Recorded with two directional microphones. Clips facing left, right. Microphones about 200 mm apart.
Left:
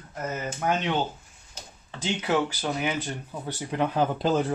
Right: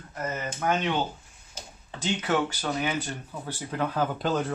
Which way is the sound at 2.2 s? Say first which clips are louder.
Left 2 dB; 10° left (ahead or behind).